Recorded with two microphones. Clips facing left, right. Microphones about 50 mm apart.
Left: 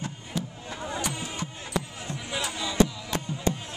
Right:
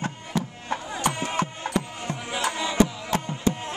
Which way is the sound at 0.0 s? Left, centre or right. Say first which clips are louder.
Right 5 dB; right.